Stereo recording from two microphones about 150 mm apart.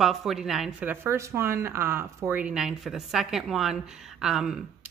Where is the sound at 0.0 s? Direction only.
Centre (ahead or behind).